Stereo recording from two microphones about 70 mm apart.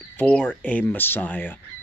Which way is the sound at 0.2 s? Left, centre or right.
Left.